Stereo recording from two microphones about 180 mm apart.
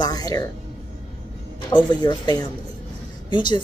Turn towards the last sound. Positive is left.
turn(degrees=25)  # may be behind; listen again after turning